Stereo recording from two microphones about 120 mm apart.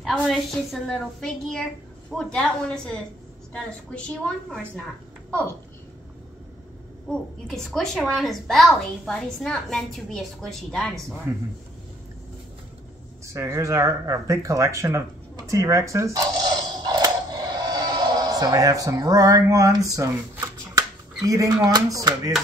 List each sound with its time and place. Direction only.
0.0 s a woman's voice: centre (ahead or behind)
7.1 s a woman's voice: 5° left (ahead or behind)
13.3 s speech: 25° right (ahead or behind)